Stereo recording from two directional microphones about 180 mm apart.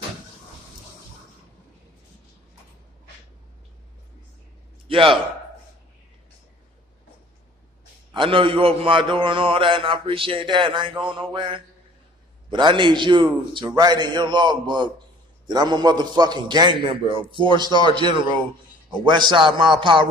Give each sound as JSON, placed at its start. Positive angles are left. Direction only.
{"t": 4.8, "sound": "a man's voice", "side_deg": -30}
{"t": 8.1, "sound": "a man's voice", "side_deg": -25}
{"t": 17.6, "sound": "a man's voice", "side_deg": 25}
{"t": 17.9, "sound": "a man's voice", "side_deg": -25}